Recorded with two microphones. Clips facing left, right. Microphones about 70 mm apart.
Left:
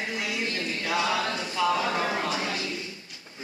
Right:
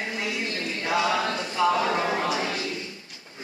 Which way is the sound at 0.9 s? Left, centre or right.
Centre.